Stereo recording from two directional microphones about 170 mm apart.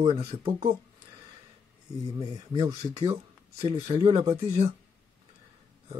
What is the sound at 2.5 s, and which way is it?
Speech, 25° right (ahead or behind).